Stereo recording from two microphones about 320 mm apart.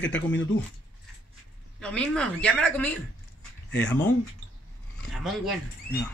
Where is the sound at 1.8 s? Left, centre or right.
Centre.